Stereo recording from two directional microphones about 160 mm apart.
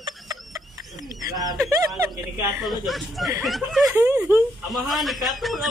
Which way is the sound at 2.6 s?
Centre (ahead or behind).